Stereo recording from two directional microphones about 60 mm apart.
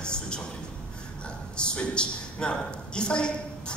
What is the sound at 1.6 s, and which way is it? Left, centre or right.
A woman's voice, centre.